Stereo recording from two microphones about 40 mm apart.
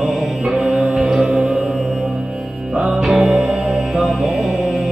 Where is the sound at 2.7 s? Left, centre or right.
Right.